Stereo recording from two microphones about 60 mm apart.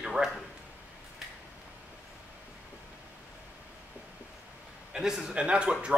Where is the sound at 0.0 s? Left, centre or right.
Centre.